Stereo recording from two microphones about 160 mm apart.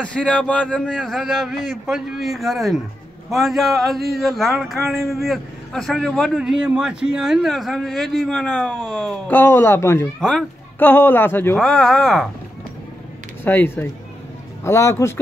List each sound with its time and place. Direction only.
0.0 s a man's voice: 5° left (ahead or behind)
13.4 s a man's voice: 15° left (ahead or behind)